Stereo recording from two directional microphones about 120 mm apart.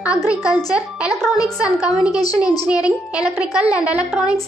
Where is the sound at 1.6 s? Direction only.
5° right (ahead or behind).